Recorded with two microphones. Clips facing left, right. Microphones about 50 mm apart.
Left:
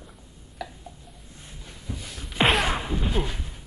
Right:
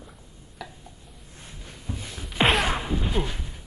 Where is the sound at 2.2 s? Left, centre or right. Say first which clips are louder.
Even; centre.